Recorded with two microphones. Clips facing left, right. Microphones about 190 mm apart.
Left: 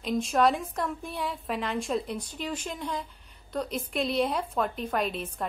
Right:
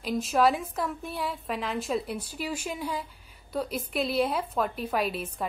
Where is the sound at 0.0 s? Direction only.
5° right (ahead or behind).